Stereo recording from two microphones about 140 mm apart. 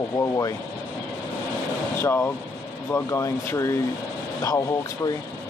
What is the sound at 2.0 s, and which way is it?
Speech, 15° left (ahead or behind).